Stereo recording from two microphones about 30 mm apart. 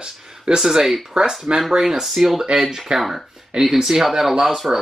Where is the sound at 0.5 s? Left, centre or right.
Centre.